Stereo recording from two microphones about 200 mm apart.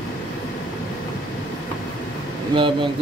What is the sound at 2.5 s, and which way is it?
Speech, 25° right (ahead or behind).